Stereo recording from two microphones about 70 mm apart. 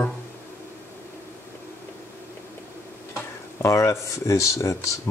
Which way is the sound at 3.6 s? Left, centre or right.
Left.